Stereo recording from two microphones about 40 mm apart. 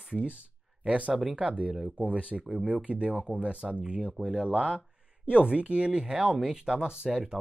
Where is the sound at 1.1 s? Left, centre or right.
Right.